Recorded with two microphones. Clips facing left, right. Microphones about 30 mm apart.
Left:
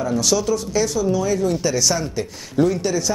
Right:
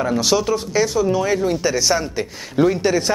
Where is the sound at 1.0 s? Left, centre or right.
Right.